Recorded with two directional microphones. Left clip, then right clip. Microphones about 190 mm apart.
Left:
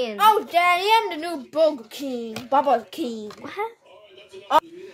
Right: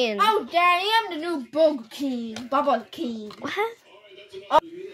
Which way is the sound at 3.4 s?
25° right (ahead or behind).